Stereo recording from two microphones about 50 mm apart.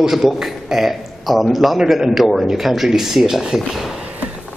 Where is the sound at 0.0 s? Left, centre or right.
Centre.